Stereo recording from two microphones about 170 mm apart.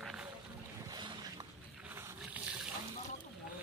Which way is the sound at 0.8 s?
25° right (ahead or behind).